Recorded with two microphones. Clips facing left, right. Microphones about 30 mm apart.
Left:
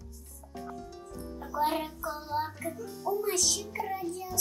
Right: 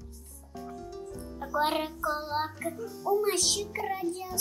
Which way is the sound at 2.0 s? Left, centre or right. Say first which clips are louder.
Right 3 dB; right.